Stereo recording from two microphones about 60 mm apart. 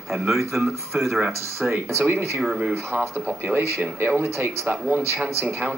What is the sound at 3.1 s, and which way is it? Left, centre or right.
Speech, right.